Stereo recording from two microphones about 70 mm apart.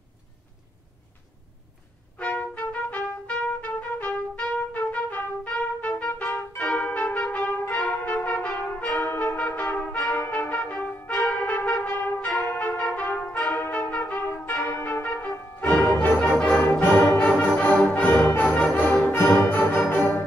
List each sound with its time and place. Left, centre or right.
2.1 s trumpet: left
10.3 s brass instrument: left
11.5 s trumpet: left
12.4 s brass instrument: left
16.0 s music: left
16.4 s music: centre
16.9 s music: left
17.6 s music: centre
18.8 s brass instrument: left
19.5 s music: left